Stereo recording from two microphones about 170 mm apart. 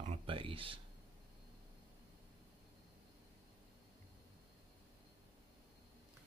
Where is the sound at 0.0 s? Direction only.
35° right (ahead or behind).